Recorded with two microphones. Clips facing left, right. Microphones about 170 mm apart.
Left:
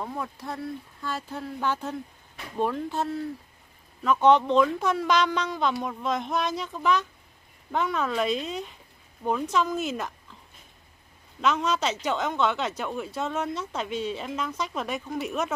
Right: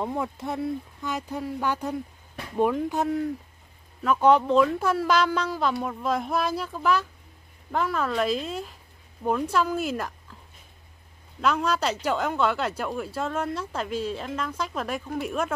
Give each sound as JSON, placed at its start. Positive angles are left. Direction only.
{"t": 0.0, "sound": "speech", "side_deg": -20}
{"t": 11.4, "sound": "speech", "side_deg": -5}